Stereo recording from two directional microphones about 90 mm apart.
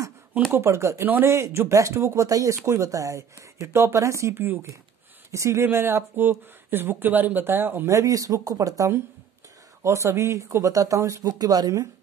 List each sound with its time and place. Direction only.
0.5 s speech: 30° right (ahead or behind)